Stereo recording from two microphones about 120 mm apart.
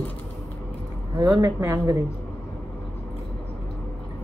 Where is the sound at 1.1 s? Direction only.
30° right (ahead or behind).